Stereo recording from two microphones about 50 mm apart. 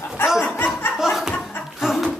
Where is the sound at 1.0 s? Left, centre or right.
Centre.